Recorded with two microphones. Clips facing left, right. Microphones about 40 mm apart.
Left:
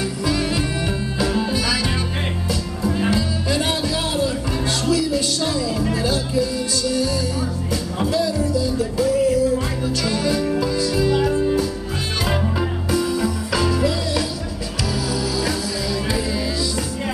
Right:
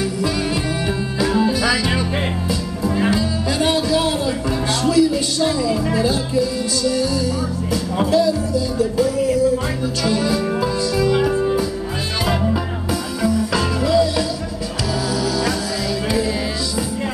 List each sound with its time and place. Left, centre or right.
1.2 s music: centre
2.8 s music: centre
4.8 s music: centre
10.0 s music: centre
12.9 s music: centre